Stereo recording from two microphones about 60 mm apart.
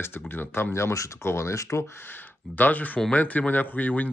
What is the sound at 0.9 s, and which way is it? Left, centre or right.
Speech, left.